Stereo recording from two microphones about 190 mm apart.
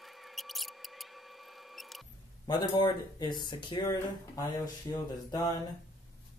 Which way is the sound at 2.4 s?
20° left (ahead or behind).